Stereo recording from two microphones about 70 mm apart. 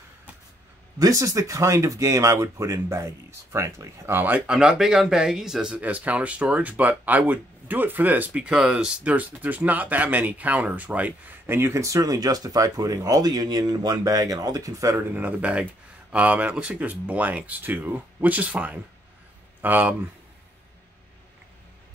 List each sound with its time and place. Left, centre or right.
0.9 s speech: right
4.5 s speech: centre
5.8 s speech: right
8.5 s speech: centre; by 11.7 s right
11.7 s speech: right
15.0 s speech: right